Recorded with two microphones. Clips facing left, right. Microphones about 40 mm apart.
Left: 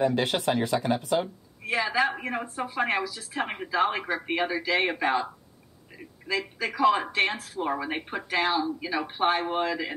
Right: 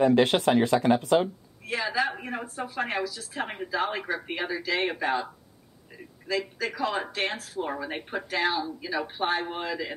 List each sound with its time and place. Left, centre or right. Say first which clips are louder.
0.0 s speech: right 4 dB; right
1.7 s speech: left 2 dB; centre
6.2 s a man's voice: even; left
7.7 s speech: left 2 dB; left